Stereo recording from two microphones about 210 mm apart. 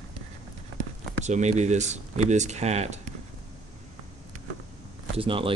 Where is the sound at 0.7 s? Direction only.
35° right (ahead or behind).